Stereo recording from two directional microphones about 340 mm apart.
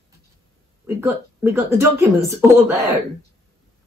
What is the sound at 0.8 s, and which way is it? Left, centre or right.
A woman's voice, centre.